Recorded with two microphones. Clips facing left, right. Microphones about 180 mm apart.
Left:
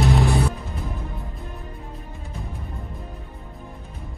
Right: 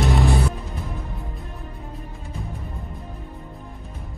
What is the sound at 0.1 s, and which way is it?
Music, centre (ahead or behind).